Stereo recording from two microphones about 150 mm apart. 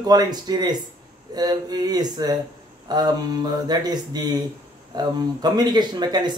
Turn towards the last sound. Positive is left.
turn(degrees=-30)  # may be behind; listen again after turning